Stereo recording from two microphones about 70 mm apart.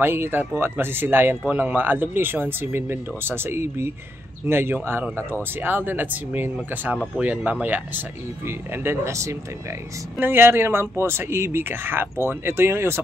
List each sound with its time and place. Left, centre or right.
0.0 s speech: right
10.1 s speech: right